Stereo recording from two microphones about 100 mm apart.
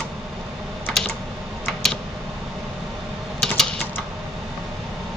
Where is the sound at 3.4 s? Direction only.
5° left (ahead or behind).